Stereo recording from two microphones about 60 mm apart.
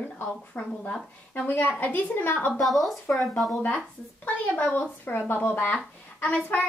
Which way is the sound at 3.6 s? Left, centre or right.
Left.